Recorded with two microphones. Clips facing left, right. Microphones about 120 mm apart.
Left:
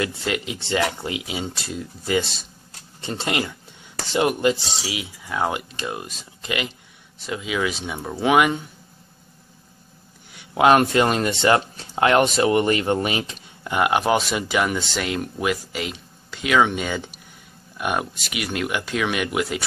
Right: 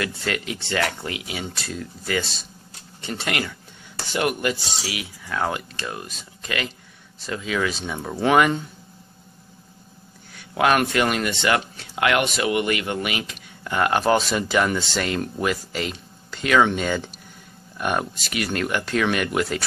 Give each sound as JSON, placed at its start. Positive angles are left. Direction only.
{"t": 0.0, "sound": "speech", "side_deg": 20}
{"t": 10.3, "sound": "speech", "side_deg": 25}
{"t": 13.7, "sound": "speech", "side_deg": 15}